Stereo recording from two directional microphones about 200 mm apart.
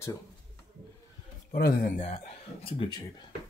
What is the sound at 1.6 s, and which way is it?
A man's voice, 45° left (ahead or behind).